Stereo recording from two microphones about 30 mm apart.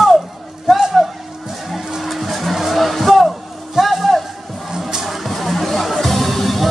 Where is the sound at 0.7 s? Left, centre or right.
Centre.